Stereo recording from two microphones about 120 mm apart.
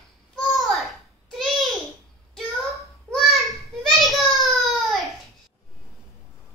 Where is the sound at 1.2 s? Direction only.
5° left (ahead or behind).